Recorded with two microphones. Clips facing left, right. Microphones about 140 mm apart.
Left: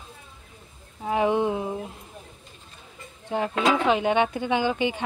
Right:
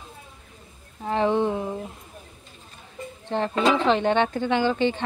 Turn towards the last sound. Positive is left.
turn(degrees=10)  # may be behind; listen again after turning